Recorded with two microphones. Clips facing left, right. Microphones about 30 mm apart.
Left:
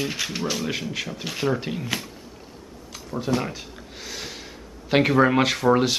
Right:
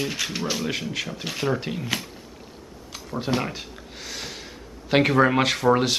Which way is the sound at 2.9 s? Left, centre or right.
Centre.